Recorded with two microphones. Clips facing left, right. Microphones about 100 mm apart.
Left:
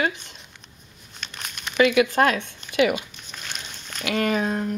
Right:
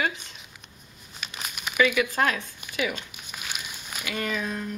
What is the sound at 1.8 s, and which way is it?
Speech, 60° left (ahead or behind).